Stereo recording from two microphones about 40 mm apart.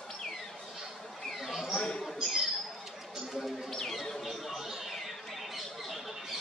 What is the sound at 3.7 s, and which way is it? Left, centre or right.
Bird, centre.